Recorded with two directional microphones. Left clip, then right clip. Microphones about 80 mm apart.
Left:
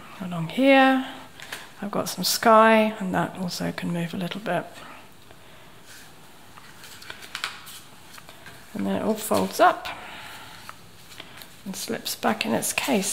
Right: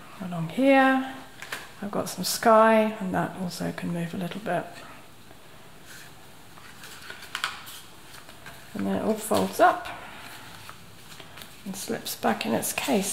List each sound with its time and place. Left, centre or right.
0.2 s speech: left
7.4 s a sound: centre
8.8 s speech: left
11.7 s speech: left